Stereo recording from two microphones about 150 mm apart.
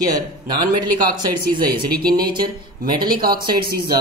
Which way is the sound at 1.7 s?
90° right.